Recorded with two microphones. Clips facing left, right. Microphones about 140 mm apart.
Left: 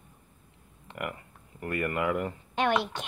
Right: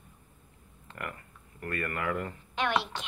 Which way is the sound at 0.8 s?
15° left (ahead or behind).